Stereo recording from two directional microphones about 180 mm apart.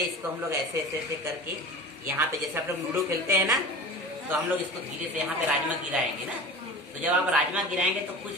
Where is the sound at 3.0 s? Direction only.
15° right (ahead or behind).